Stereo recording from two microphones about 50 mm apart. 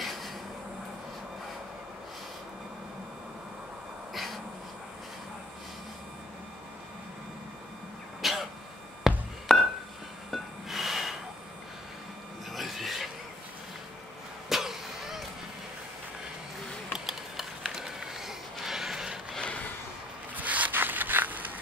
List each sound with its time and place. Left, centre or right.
0.0 s vehicle: centre
4.1 s vehicle: centre
8.2 s throat clearing: centre
9.1 s music: centre
9.5 s music: centre
10.3 s snort: centre
12.5 s a sound: centre
14.5 s cough: centre
16.9 s a sound: centre
20.3 s zipper: right
20.7 s a sound: right